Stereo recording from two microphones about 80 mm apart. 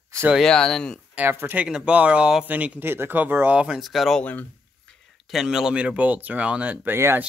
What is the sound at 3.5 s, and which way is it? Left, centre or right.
Speech, centre.